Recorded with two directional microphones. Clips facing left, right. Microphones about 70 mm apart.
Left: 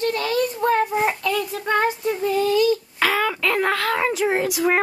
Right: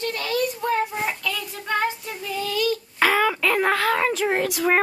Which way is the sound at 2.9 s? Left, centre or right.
Centre.